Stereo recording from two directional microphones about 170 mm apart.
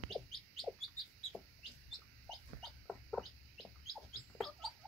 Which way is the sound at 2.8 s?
Centre (ahead or behind).